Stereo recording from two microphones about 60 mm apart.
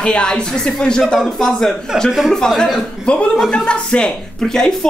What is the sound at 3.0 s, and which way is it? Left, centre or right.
Speech, centre.